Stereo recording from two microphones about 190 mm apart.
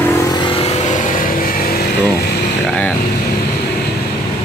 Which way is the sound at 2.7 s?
5° left (ahead or behind).